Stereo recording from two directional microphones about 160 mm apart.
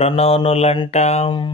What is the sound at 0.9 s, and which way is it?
Mantra, 40° left (ahead or behind).